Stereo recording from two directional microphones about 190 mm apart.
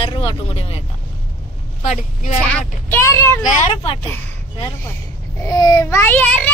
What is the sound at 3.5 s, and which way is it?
Speech, 35° left (ahead or behind).